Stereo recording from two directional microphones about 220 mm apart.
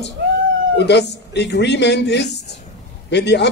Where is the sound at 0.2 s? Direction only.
50° right (ahead or behind).